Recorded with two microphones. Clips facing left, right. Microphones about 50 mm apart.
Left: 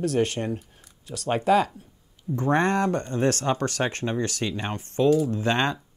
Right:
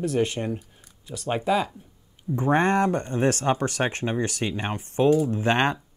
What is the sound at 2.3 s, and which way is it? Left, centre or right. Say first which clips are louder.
Speech: right 1 dB; centre.